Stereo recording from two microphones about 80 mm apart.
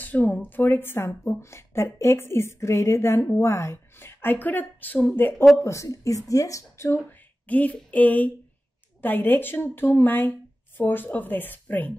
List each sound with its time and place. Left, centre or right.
0.0 s a woman's voice: left
5.6 s speech: left
6.9 s a woman's voice: left